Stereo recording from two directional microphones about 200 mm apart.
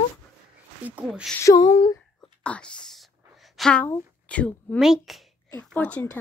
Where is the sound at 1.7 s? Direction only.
30° left (ahead or behind).